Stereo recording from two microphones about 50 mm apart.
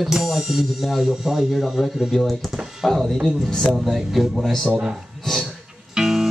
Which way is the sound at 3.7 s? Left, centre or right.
Centre.